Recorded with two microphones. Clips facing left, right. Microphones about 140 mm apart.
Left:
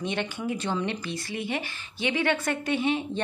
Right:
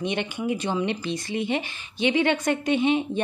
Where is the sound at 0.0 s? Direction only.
15° right (ahead or behind).